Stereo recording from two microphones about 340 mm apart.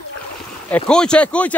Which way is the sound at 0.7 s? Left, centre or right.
Centre.